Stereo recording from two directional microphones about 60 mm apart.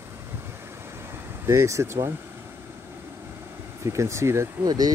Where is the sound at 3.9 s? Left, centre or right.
Right.